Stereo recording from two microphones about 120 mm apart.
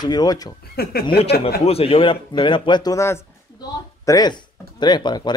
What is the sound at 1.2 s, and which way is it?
A man's voice, 55° left (ahead or behind).